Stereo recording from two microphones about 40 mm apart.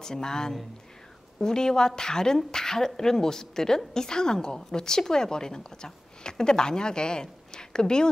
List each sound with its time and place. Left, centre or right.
0.0 s speech: centre